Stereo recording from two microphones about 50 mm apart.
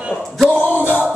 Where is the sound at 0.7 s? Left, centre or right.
Left.